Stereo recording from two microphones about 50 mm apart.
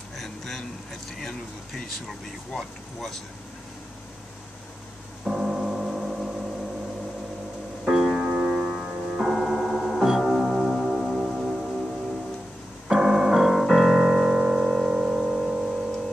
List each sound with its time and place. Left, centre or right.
0.2 s a sound: centre
1.2 s speech: centre
5.2 s music: centre
7.8 s music: centre
8.2 s music: right
9.3 s music: centre
12.8 s keyboard: centre